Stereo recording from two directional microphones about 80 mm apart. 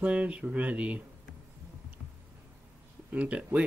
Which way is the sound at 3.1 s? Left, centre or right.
Centre.